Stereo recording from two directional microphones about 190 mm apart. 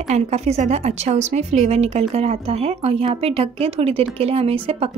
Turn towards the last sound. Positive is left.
turn(degrees=-30)  # may be behind; listen again after turning